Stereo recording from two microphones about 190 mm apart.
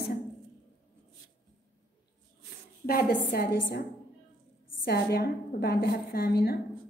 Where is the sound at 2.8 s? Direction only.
55° left (ahead or behind).